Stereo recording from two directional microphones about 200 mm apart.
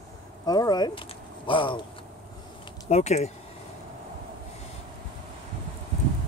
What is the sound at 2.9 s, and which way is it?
Speech, 35° left (ahead or behind).